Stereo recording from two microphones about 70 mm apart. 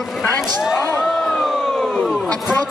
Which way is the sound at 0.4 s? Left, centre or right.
Centre.